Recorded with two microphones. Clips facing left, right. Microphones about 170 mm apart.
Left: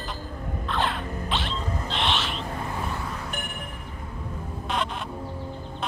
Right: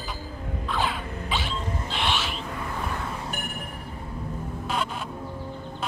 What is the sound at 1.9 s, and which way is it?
Owl, 5° right (ahead or behind).